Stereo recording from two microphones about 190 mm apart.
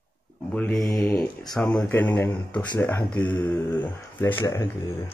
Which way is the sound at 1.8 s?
10° left (ahead or behind).